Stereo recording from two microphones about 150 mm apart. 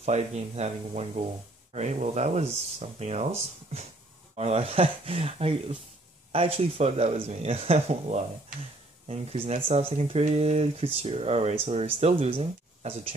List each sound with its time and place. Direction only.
0.0 s speech: 50° right (ahead or behind)
4.4 s speech: 45° right (ahead or behind)